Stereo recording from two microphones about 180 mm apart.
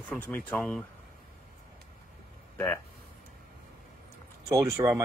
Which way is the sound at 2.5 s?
10° left (ahead or behind).